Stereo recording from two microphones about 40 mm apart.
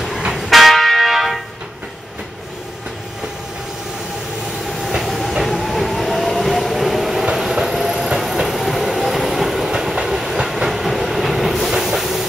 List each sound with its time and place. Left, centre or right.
0.3 s church bell: centre
4.9 s train: centre